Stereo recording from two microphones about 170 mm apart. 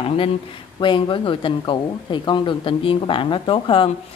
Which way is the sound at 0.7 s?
30° left (ahead or behind).